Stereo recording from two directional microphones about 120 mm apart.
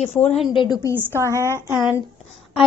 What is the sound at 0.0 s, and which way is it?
Speech, 70° left (ahead or behind).